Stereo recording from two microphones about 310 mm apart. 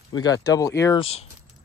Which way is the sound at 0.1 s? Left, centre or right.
Centre.